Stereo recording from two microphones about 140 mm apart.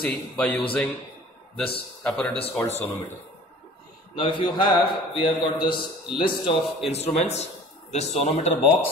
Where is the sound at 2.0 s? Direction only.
10° left (ahead or behind).